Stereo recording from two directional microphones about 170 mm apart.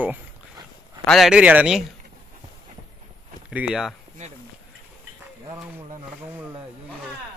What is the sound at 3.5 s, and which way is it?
Speech, 5° right (ahead or behind).